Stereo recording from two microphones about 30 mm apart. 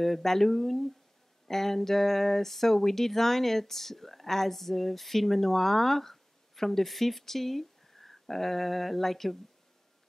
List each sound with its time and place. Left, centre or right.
0.0 s speech: centre